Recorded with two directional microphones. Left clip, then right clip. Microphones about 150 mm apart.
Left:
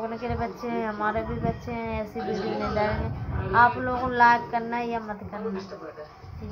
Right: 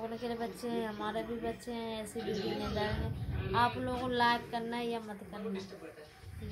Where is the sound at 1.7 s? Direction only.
5° left (ahead or behind).